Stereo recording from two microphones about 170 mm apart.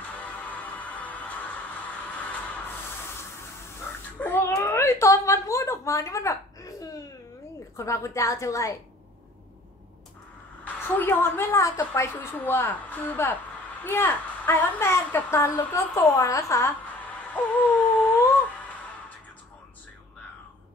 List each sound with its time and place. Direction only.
0.2 s music: 10° left (ahead or behind)
4.2 s a sound: 10° left (ahead or behind)
7.7 s a woman's voice: 15° left (ahead or behind)
10.6 s a woman's voice: 10° left (ahead or behind)